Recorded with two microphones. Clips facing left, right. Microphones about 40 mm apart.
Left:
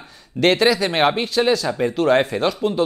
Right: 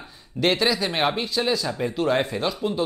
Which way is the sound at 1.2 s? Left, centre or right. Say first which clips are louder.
Left 6 dB; left.